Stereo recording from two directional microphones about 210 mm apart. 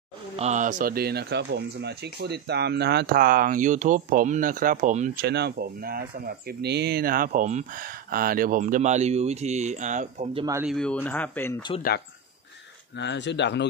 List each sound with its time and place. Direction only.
0.4 s speech: 35° right (ahead or behind)
10.6 s speech: centre (ahead or behind)
12.9 s speech: 55° left (ahead or behind)